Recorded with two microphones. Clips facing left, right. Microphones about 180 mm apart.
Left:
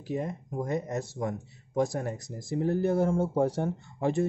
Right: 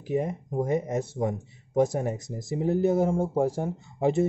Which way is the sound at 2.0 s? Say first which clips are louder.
Right 4 dB; 15° right (ahead or behind).